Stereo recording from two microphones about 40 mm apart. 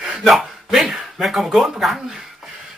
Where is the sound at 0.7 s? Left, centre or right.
Centre.